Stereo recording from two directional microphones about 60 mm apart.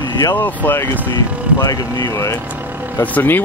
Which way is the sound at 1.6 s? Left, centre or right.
Left.